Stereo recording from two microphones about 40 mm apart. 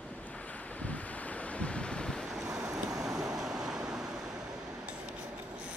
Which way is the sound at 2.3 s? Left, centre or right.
Centre.